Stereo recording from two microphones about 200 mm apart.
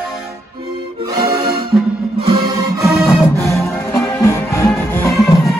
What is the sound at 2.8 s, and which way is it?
Music, centre (ahead or behind).